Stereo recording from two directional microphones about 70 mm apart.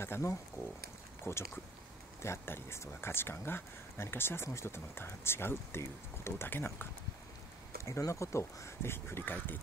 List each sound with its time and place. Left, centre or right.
0.0 s speech: left
8.1 s speech: left